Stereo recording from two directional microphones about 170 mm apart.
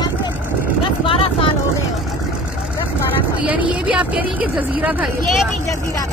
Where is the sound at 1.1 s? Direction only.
35° left (ahead or behind).